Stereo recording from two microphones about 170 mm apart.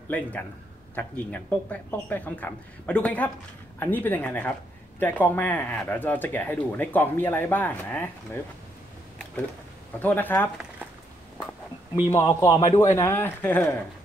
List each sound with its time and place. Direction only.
0.1 s speech: 10° left (ahead or behind)
9.9 s speech: 10° left (ahead or behind)
12.1 s a man's voice: 20° left (ahead or behind)